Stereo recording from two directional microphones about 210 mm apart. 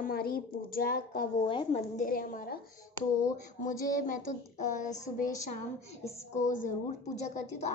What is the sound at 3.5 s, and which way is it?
A woman's voice, 40° left (ahead or behind).